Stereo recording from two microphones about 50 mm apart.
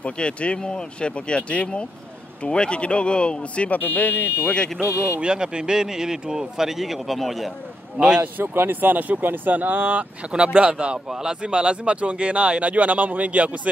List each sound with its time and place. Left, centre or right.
0.0 s speech: left
3.8 s speech: left
4.7 s speech: right
5.0 s speech: centre
8.2 s speech: right
10.3 s speech: centre
11.1 s speech: centre
11.4 s speech: right